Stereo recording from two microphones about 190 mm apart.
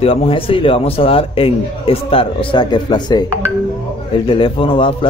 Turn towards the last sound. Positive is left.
turn(degrees=25)  # may be behind; listen again after turning